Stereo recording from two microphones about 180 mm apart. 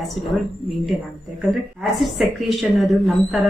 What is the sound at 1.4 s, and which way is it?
A woman's voice, centre (ahead or behind).